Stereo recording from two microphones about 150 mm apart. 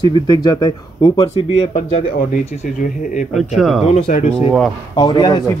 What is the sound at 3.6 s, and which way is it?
Speech, centre (ahead or behind).